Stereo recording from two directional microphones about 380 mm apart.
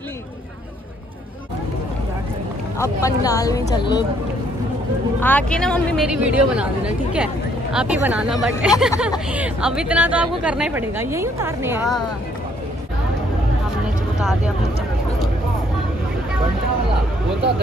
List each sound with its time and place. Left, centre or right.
2.8 s a woman's voice: centre
5.2 s a woman's voice: centre